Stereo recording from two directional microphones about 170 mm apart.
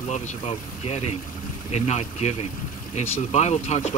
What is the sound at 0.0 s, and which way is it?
Speech, 40° left (ahead or behind).